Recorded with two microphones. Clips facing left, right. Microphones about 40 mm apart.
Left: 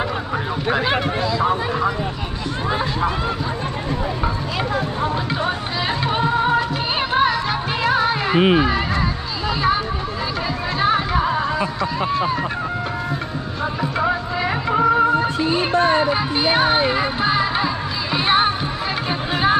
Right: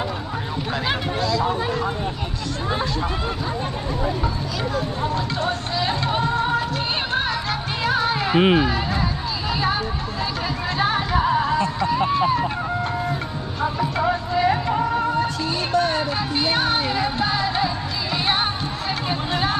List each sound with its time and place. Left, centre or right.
0.7 s speech: left
5.9 s music: centre
8.5 s speech: centre
9.5 s a sound: centre
10.8 s music: centre
12.0 s speech: centre
13.6 s speech: centre
15.2 s speech: left
18.1 s music: centre